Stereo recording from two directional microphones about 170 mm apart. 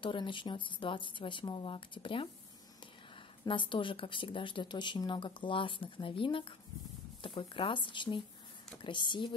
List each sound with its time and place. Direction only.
0.0 s speech: 30° left (ahead or behind)
3.4 s speech: 30° left (ahead or behind)